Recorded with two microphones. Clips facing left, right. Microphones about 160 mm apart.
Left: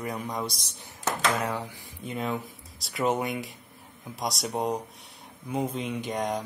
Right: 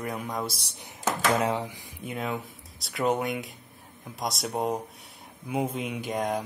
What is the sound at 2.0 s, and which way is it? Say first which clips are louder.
Speech: left 1 dB; centre (ahead or behind).